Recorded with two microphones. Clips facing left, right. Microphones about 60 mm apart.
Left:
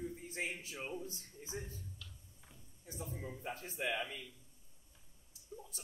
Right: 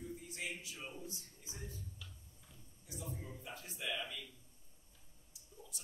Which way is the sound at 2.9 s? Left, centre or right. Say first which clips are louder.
Left 2 dB; left.